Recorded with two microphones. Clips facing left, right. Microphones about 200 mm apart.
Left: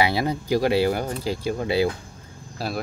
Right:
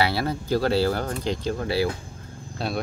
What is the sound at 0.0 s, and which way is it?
Speech, 15° left (ahead or behind).